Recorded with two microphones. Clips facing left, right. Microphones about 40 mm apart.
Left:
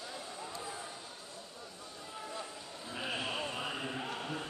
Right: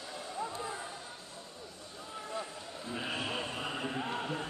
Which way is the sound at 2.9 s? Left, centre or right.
Centre.